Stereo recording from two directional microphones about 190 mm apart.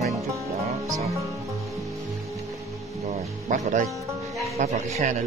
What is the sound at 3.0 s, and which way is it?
Music, 40° right (ahead or behind).